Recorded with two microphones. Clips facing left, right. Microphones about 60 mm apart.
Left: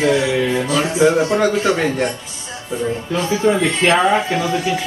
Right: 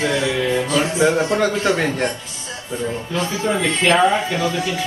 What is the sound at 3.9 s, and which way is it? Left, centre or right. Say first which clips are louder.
Speech: left 1 dB; centre.